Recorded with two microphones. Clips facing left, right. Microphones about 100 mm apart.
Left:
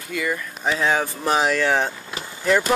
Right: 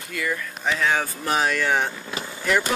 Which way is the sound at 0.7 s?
25° left (ahead or behind).